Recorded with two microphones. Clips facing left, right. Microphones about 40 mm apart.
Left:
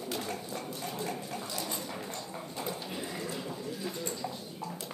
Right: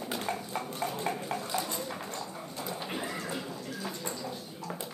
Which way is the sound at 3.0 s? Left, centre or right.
Right.